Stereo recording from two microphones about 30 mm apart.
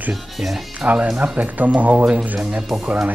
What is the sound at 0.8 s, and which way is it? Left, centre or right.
Speech, right.